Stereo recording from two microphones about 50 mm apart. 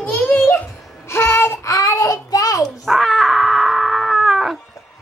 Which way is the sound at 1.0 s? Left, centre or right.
Left.